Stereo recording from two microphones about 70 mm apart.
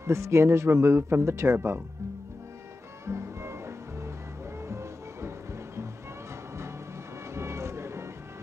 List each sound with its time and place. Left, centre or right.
0.0 s speech: right
3.1 s music: right
7.3 s vehicle: right